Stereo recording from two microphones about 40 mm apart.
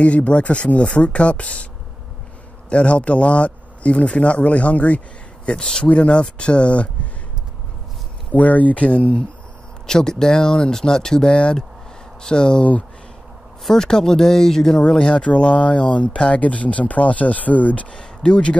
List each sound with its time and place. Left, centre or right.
0.0 s speech: left
2.7 s speech: left
8.3 s speech: left
9.8 s speech: centre
13.7 s speech: centre; by 17.8 s left
18.3 s speech: left